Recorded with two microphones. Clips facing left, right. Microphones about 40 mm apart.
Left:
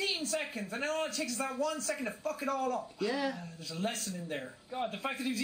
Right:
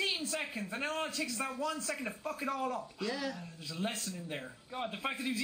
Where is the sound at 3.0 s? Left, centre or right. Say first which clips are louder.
Left 4 dB; centre.